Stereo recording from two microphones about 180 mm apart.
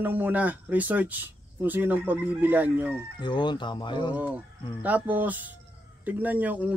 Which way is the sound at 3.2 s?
25° left (ahead or behind).